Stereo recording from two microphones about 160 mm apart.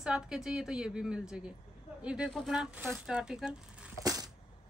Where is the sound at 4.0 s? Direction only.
25° right (ahead or behind).